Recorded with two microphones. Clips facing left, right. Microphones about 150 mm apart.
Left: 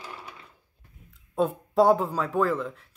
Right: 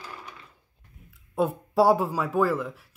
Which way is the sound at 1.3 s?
5° right (ahead or behind).